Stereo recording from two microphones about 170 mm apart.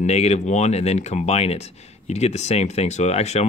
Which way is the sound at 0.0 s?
40° left (ahead or behind).